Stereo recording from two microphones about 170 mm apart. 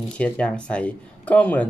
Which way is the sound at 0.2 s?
5° left (ahead or behind).